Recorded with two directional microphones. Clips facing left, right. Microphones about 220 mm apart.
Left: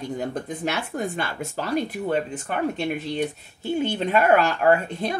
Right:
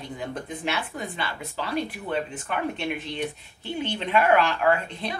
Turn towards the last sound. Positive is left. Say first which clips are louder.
# left 4 dB
turn(degrees=45)  # may be behind; listen again after turning